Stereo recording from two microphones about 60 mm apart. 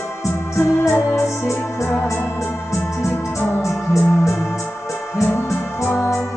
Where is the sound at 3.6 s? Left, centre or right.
Left.